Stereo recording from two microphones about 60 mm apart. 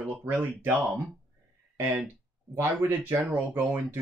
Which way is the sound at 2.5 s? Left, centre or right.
Right.